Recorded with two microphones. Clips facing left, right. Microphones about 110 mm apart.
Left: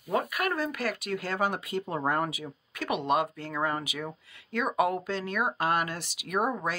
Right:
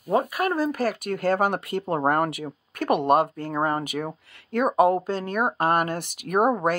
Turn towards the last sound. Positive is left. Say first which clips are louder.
# right 8 dB
turn(degrees=-55)  # may be behind; listen again after turning